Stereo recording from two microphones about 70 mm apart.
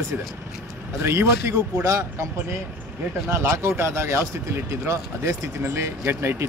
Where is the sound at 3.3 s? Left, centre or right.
Right.